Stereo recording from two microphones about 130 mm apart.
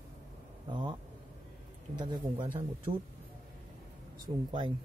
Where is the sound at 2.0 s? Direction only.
35° right (ahead or behind).